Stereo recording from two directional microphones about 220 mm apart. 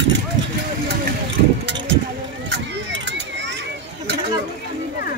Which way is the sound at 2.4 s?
50° right (ahead or behind).